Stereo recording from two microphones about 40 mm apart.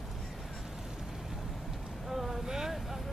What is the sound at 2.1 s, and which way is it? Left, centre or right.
Boat, centre.